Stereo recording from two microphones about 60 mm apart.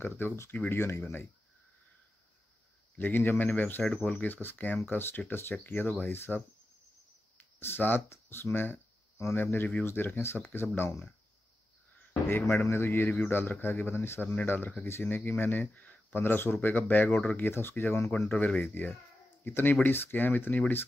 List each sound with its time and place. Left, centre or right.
0.2 s speech: left
3.0 s speech: left
7.3 s cricket: left
8.1 s speech: left
12.1 s speech: left
14.2 s speech: left
14.8 s speech: left
18.3 s speech: left